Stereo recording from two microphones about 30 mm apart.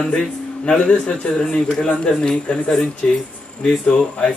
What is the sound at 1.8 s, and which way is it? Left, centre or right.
A man's voice, left.